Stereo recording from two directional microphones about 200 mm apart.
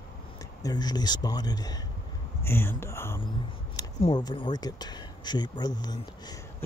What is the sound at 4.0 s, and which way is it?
Speech, 25° left (ahead or behind).